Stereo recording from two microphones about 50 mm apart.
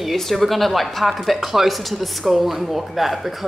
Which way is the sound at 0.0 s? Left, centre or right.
Centre.